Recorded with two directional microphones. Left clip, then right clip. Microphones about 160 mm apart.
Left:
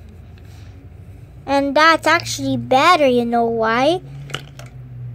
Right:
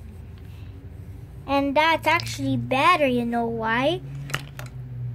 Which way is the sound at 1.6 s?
25° left (ahead or behind).